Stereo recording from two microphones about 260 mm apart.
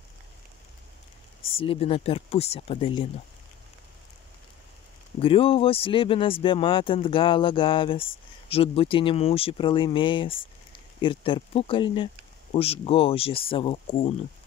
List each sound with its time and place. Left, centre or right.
1.6 s speech: left
5.2 s speech: left